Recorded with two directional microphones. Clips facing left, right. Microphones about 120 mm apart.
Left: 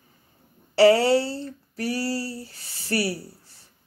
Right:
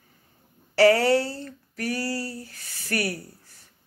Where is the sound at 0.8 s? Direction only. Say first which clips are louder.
Left 2 dB; 25° left (ahead or behind).